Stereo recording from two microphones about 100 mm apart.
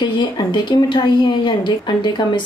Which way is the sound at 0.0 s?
50° left (ahead or behind).